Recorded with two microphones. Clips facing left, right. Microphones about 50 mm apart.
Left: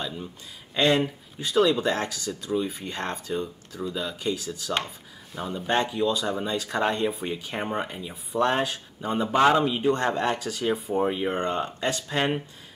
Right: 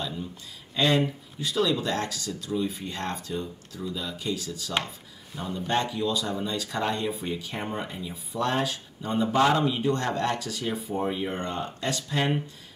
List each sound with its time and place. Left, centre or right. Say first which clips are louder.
1.4 s speech: left 4 dB; left; by 5.7 s centre
5.7 s speech: left 3 dB; centre